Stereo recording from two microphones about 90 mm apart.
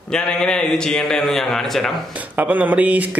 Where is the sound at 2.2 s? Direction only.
20° right (ahead or behind).